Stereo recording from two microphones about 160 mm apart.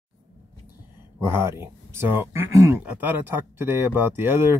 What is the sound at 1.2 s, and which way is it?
Speech, 15° right (ahead or behind).